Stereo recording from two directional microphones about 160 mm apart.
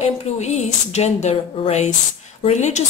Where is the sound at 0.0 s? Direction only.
45° left (ahead or behind).